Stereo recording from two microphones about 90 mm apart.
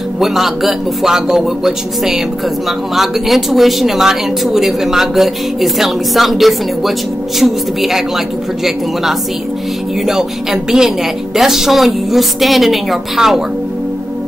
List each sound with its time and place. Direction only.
0.2 s speech: centre (ahead or behind)
10.0 s speech: 5° right (ahead or behind)